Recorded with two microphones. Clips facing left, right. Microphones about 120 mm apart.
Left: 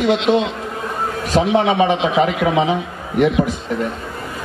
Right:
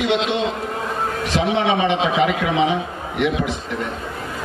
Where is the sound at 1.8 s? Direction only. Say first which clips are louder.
Left 2 dB; 40° left (ahead or behind).